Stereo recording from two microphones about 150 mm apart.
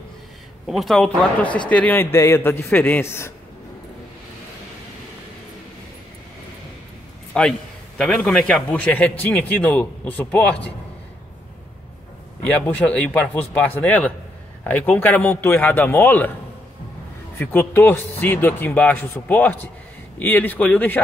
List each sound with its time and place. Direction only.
0.7 s a man's voice: centre (ahead or behind); by 3.3 s 15° left (ahead or behind)
7.3 s a man's voice: 5° left (ahead or behind)
12.4 s a man's voice: 10° left (ahead or behind)
17.4 s a man's voice: 15° left (ahead or behind)